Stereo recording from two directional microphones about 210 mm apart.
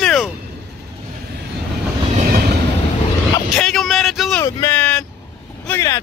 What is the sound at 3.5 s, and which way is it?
Speech, centre (ahead or behind).